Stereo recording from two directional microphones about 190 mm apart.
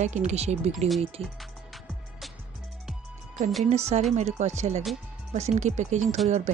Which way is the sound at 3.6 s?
35° right (ahead or behind).